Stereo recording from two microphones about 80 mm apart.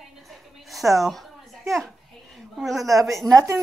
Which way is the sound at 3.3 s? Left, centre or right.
Right.